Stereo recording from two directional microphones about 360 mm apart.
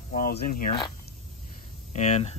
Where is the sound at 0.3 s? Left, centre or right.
Left.